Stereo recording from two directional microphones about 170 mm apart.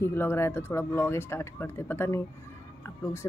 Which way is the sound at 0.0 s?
15° left (ahead or behind).